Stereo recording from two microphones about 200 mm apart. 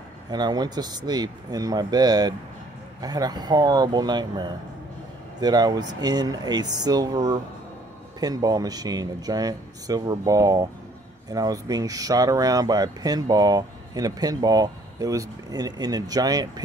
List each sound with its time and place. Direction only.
0.3 s speech: 20° right (ahead or behind)